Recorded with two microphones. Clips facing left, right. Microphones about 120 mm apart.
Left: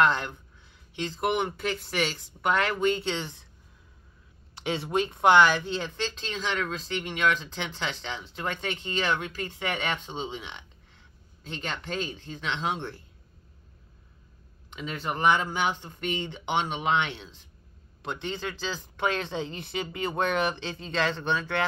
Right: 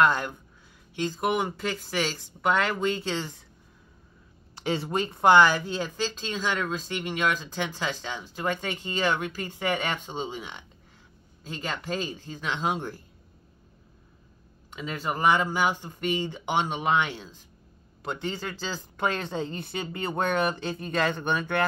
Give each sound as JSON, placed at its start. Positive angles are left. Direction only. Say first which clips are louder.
{"t": 0.1, "sound": "speech", "louder": "right 1 dB", "side_deg": -5}
{"t": 4.6, "sound": "speech", "louder": "even", "side_deg": 0}
{"t": 14.8, "sound": "speech", "louder": "right 1 dB", "side_deg": -5}